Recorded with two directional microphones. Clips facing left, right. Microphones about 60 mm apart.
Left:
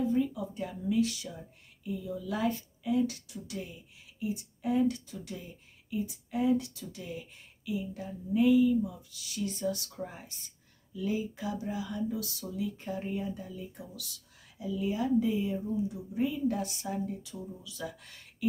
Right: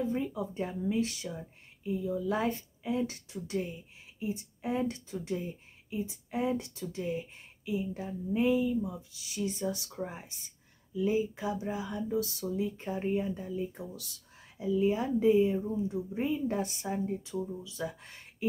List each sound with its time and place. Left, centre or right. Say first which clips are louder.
0.0 s speech: left 3 dB; right